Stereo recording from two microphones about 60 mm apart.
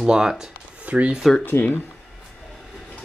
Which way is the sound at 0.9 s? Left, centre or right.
Right.